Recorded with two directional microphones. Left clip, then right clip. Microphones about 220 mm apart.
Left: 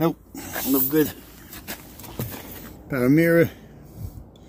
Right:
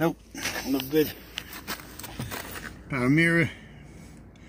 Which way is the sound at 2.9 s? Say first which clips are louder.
Left 4 dB; centre (ahead or behind).